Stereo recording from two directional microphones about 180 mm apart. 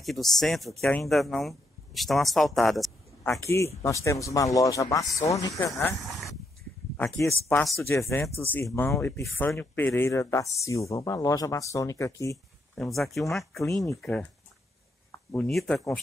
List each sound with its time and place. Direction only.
0.0 s speech: centre (ahead or behind)
3.3 s speech: 15° left (ahead or behind)
7.4 s speech: 5° left (ahead or behind)
7.9 s speech: 15° left (ahead or behind)
12.8 s speech: centre (ahead or behind)
15.0 s a sound: 10° left (ahead or behind)
15.5 s speech: 5° left (ahead or behind)